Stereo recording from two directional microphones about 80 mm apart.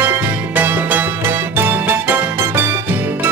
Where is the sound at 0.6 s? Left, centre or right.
Right.